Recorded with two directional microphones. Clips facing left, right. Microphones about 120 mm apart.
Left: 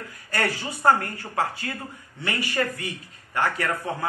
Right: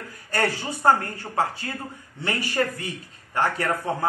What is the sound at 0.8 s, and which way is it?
A man's voice, 25° right (ahead or behind).